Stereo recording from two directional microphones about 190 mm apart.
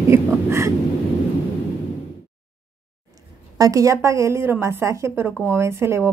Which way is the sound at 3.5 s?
20° right (ahead or behind).